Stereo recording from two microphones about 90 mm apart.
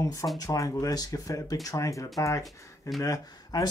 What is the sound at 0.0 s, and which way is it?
Speech, 40° left (ahead or behind).